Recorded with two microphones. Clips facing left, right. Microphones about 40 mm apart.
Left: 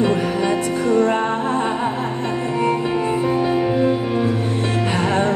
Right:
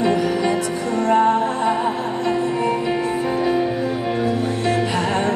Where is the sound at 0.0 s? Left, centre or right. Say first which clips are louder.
Even; left.